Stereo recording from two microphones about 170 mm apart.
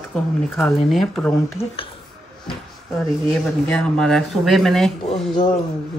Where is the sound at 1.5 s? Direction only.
30° left (ahead or behind).